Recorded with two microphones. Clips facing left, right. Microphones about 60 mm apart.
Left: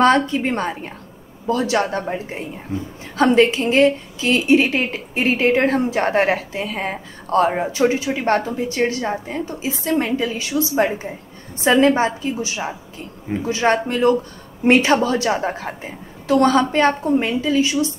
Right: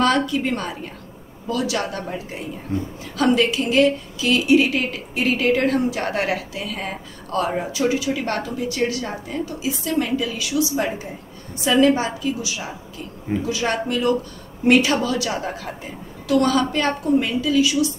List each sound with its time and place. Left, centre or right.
0.0 s a woman's voice: left
2.7 s speech: centre
3.2 s a woman's voice: left